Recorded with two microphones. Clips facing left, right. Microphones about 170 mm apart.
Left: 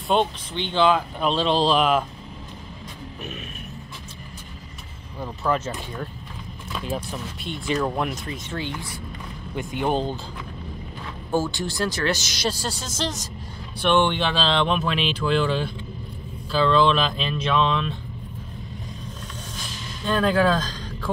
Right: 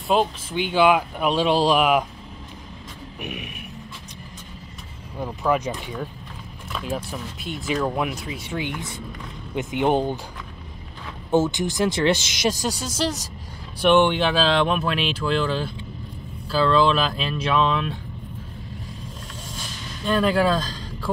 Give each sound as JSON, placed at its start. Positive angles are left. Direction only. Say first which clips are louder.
{"t": 0.1, "sound": "speech", "louder": "right 1 dB", "side_deg": -5}
{"t": 3.2, "sound": "a sound", "louder": "right 3 dB", "side_deg": -15}
{"t": 5.2, "sound": "speech", "louder": "right 2 dB", "side_deg": -10}
{"t": 7.1, "sound": "speech", "louder": "even", "side_deg": -5}
{"t": 11.3, "sound": "speech", "louder": "right 4 dB", "side_deg": -20}
{"t": 20.1, "sound": "speech", "louder": "even", "side_deg": -5}